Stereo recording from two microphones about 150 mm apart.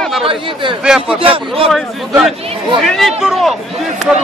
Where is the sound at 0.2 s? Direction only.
35° right (ahead or behind).